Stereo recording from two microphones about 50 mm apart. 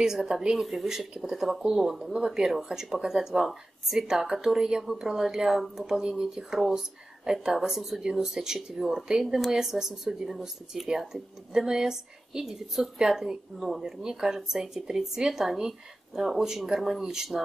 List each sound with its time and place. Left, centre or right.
0.0 s speech: centre